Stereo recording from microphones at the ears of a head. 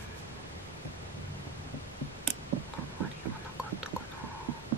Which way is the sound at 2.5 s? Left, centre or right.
Right.